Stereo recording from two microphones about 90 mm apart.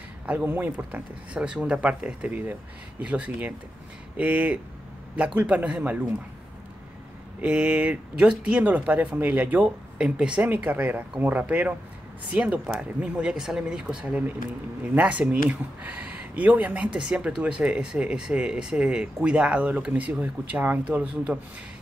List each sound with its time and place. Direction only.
0.3 s speech: 20° right (ahead or behind)
7.4 s speech: 15° right (ahead or behind)
9.9 s speech: 10° right (ahead or behind)